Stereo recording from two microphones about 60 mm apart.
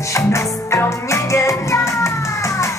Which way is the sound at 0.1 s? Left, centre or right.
Left.